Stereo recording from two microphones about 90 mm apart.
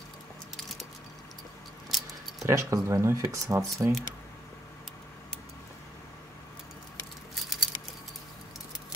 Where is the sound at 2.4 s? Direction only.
30° right (ahead or behind).